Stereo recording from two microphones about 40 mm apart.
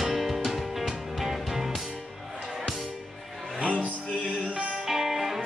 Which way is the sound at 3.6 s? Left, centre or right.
Right.